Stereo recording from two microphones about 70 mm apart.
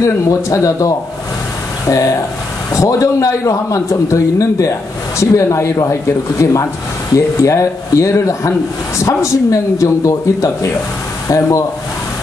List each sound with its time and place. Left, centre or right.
0.0 s a man's voice: left